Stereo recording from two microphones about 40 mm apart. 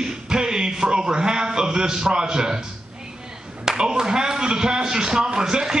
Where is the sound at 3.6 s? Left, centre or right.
Centre.